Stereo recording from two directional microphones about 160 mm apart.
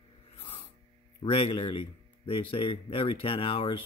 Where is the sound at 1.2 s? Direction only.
35° left (ahead or behind).